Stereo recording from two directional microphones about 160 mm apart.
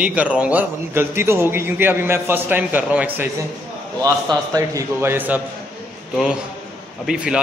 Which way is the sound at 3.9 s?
25° right (ahead or behind).